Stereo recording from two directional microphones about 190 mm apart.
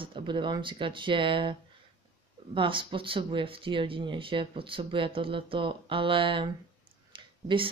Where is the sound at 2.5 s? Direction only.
25° right (ahead or behind).